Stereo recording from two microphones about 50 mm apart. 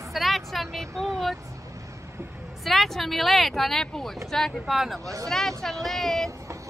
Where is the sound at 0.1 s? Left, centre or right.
Centre.